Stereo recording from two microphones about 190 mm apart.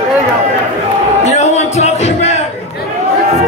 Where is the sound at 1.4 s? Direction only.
35° left (ahead or behind).